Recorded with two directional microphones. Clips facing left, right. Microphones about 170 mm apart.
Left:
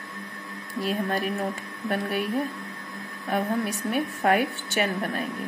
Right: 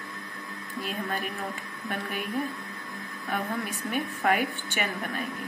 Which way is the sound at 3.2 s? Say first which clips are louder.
Left 5 dB; 40° left (ahead or behind).